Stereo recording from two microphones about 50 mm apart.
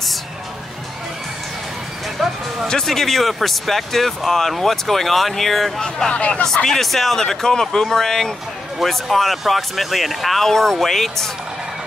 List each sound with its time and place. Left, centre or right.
2.7 s speech: centre
6.1 s speech: left
6.4 s speech: centre